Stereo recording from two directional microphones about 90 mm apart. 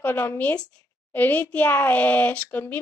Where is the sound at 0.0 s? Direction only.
20° left (ahead or behind).